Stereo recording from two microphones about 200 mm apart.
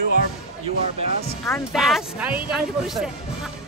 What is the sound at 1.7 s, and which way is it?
Speech, centre (ahead or behind).